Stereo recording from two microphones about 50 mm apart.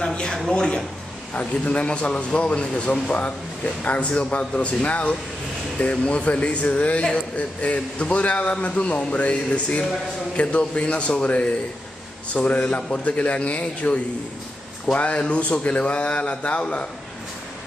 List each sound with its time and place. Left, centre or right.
0.0 s a man's voice: centre